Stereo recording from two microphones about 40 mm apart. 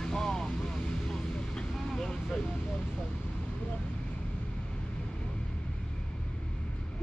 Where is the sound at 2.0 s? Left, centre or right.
Centre.